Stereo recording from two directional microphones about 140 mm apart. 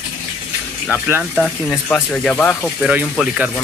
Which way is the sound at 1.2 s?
Centre (ahead or behind).